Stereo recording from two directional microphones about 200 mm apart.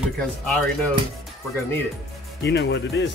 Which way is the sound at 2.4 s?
60° left (ahead or behind).